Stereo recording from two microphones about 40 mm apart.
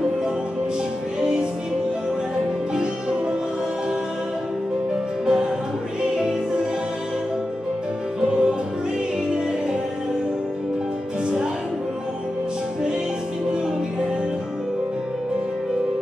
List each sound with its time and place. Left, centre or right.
2.7 s music: right
5.2 s music: centre
8.2 s music: right